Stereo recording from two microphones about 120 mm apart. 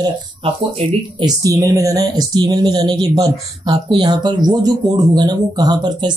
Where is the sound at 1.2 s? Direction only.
30° right (ahead or behind).